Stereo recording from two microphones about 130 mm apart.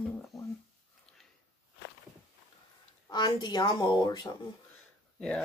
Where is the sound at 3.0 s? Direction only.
35° left (ahead or behind).